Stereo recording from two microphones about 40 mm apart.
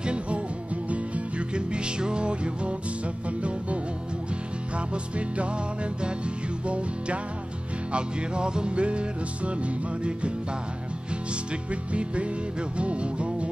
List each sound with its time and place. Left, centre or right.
0.0 s music: right
11.7 s music: right